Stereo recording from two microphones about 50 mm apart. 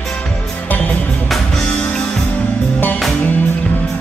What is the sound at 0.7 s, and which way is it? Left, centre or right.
Music, left.